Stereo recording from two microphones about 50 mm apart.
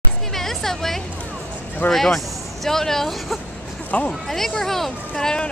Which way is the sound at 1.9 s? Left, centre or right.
Centre.